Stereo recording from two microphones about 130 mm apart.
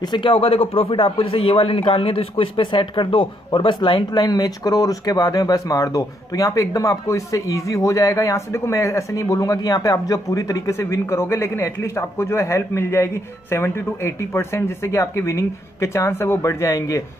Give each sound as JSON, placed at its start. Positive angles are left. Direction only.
{"t": 0.0, "sound": "a man's voice", "side_deg": 40}